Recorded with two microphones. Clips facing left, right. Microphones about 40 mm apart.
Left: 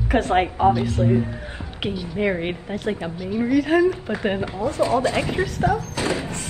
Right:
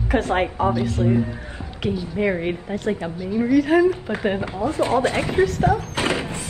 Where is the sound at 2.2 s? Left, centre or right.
Centre.